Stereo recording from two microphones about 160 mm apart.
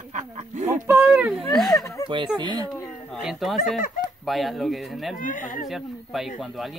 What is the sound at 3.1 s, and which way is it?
A child's voice, centre (ahead or behind).